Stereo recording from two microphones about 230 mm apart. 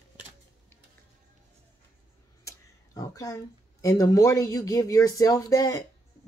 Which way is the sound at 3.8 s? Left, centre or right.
Centre.